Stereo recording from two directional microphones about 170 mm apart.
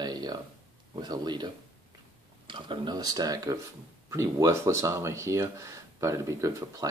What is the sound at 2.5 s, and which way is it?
Speech, 25° right (ahead or behind).